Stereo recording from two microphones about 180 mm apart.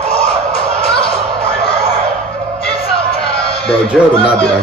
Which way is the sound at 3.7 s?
30° left (ahead or behind).